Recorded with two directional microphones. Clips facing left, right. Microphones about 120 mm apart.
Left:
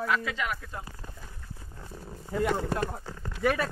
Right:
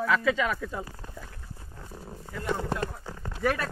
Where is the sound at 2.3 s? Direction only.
30° left (ahead or behind).